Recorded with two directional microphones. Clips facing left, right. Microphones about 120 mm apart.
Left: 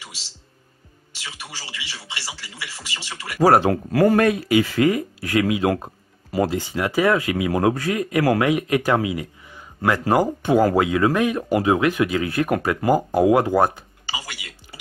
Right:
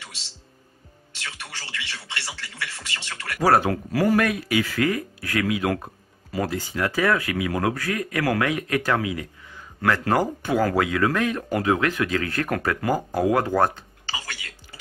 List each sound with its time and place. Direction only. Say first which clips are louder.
1.1 s speech: left 1 dB; 10° left (ahead or behind)
3.3 s speech: left 4 dB; 30° left (ahead or behind)
3.9 s speech: left 4 dB; 45° left (ahead or behind)
4.2 s speech: left 5 dB; 25° left (ahead or behind)